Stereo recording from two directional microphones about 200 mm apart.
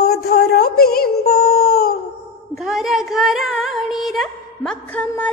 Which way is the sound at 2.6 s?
Centre (ahead or behind).